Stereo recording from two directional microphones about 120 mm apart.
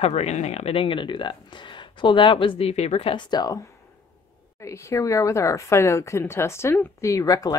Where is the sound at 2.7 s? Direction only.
65° left (ahead or behind); by 3.5 s 35° left (ahead or behind).